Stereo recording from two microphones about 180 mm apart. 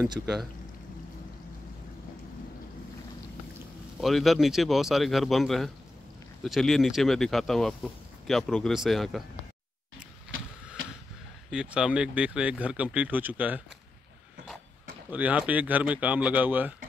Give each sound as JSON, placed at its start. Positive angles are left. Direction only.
{"t": 4.0, "sound": "speech", "side_deg": 0}
{"t": 10.8, "sound": "a sound", "side_deg": -90}
{"t": 11.5, "sound": "speech", "side_deg": -5}
{"t": 15.0, "sound": "speech", "side_deg": -10}